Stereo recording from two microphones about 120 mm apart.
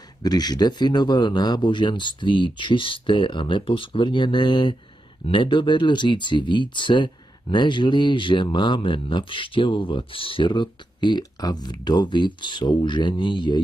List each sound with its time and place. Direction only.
0.2 s speech: 35° left (ahead or behind)